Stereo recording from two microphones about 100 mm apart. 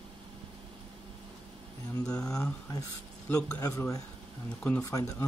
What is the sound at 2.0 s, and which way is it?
Speech, 10° left (ahead or behind).